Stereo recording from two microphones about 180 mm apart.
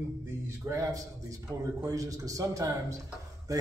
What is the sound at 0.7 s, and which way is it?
A man's voice, 20° right (ahead or behind).